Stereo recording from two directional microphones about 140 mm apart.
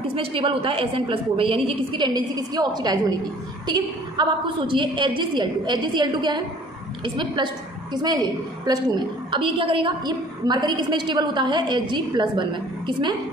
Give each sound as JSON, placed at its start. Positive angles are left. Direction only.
{"t": 0.1, "sound": "a woman's voice", "side_deg": -40}